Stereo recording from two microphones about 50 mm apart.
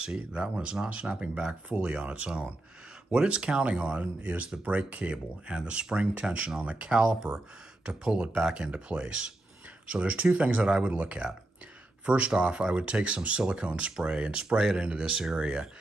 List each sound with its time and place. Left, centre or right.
0.0 s speech: centre